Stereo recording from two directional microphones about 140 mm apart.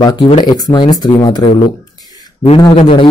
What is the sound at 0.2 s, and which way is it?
A man's voice, 30° left (ahead or behind).